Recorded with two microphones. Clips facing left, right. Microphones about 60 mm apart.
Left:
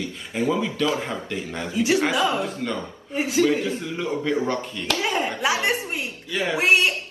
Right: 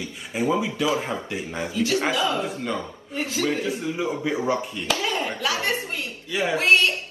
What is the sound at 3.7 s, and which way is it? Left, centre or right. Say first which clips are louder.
Speech: right 1 dB; centre.